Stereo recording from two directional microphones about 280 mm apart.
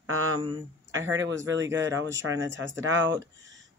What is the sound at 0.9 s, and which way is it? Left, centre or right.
Speech, right.